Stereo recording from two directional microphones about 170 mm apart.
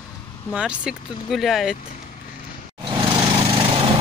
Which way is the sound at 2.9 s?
25° right (ahead or behind).